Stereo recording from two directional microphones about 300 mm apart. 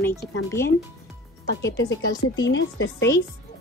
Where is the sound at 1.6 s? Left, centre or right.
Left.